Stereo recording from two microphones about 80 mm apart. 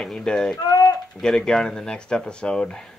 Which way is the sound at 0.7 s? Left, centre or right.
Left.